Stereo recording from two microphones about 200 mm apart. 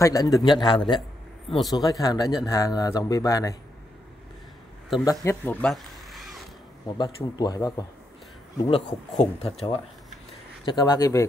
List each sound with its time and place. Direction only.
0.0 s speech: 15° left (ahead or behind)
5.2 s speech: 10° left (ahead or behind)
7.0 s speech: 20° left (ahead or behind)